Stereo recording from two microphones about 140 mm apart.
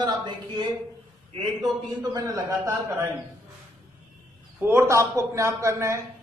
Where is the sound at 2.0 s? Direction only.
25° right (ahead or behind).